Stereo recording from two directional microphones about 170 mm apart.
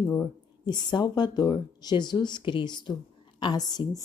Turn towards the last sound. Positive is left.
turn(degrees=20)  # may be behind; listen again after turning